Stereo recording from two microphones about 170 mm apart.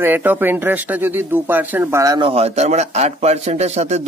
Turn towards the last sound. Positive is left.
turn(degrees=-40)  # may be behind; listen again after turning